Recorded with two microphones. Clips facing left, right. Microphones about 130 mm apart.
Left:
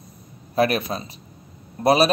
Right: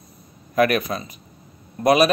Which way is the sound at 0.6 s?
30° left (ahead or behind).